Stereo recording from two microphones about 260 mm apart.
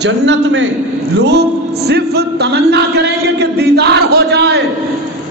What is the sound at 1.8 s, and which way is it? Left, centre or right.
A man's voice, right.